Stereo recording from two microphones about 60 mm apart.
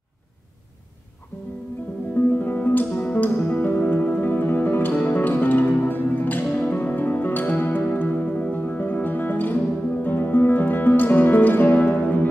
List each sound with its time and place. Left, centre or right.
2.3 s music: left